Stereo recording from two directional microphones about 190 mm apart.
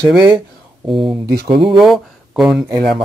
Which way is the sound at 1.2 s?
60° right (ahead or behind).